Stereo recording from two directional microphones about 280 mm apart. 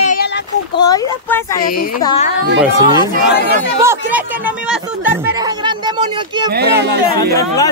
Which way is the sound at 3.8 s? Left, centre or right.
Centre.